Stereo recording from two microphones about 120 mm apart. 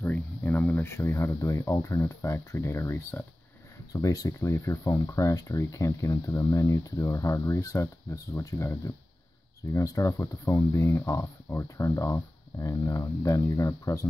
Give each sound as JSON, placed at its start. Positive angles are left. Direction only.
{"t": 0.0, "sound": "speech", "side_deg": 15}